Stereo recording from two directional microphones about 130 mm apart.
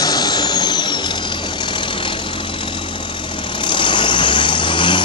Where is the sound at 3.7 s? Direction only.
35° left (ahead or behind).